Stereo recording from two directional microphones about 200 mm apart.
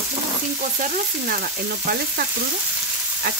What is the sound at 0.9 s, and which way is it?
Frying, 45° right (ahead or behind).